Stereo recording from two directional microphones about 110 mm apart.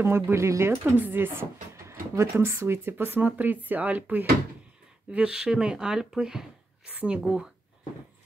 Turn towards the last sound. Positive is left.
turn(degrees=-5)  # may be behind; listen again after turning